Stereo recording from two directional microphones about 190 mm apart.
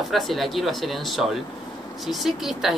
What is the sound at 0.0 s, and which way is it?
Speech, centre (ahead or behind).